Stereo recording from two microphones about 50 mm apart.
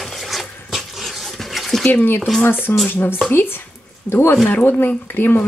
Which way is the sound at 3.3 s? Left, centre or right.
Left.